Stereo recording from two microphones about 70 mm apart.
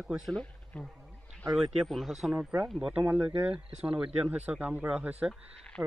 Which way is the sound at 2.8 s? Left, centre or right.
Centre.